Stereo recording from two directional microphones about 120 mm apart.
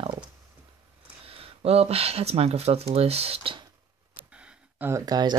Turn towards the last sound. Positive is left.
turn(degrees=-35)  # may be behind; listen again after turning